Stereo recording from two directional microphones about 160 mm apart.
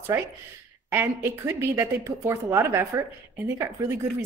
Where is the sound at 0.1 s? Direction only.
15° right (ahead or behind).